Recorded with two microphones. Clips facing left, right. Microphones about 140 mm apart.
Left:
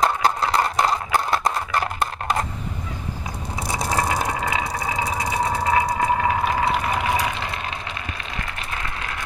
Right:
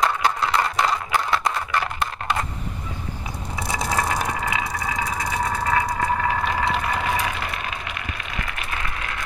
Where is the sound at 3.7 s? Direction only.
35° left (ahead or behind); by 6.3 s 20° left (ahead or behind).